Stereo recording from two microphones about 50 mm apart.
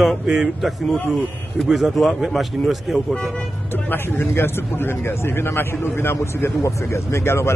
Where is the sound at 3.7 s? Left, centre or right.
Left.